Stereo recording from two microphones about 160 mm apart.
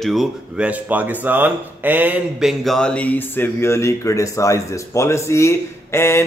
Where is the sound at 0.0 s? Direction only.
Centre (ahead or behind).